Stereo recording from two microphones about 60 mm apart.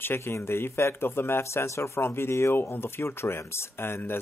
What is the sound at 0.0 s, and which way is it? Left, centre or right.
Speech, left.